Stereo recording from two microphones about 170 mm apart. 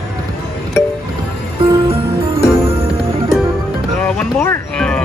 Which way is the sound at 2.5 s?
35° right (ahead or behind).